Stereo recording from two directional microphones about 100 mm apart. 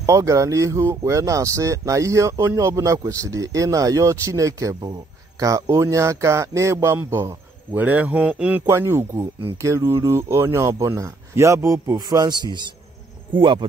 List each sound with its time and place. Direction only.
0.0 s speech: 35° right (ahead or behind); by 8.6 s 15° right (ahead or behind)
8.6 s speech: 25° right (ahead or behind)
12.0 s speech: 45° right (ahead or behind)